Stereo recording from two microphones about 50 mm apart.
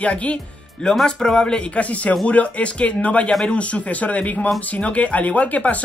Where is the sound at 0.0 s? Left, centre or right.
Left.